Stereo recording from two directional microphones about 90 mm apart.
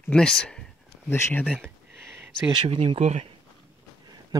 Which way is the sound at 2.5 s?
60° right (ahead or behind).